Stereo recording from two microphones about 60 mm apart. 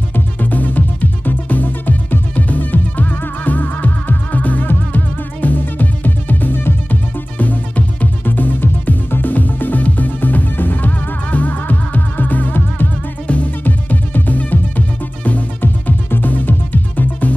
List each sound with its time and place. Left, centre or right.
0.1 s music: left